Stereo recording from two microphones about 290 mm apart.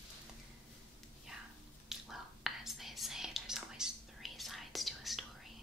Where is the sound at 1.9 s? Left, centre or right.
Centre.